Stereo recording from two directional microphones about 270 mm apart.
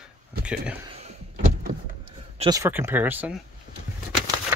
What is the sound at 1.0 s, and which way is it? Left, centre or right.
Door, right.